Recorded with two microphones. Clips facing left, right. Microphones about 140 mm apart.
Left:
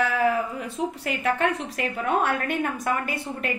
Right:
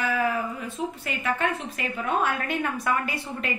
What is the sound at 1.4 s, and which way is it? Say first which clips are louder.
Speech: left 3 dB; 70° left (ahead or behind).